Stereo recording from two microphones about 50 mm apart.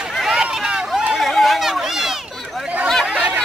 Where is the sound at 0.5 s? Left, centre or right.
Centre.